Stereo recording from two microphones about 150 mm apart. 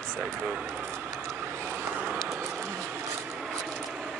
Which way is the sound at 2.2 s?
10° right (ahead or behind).